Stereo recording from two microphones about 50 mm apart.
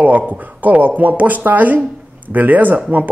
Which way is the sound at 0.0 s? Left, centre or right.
Right.